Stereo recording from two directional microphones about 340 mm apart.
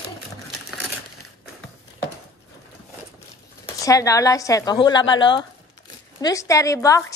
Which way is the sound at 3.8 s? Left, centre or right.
Centre.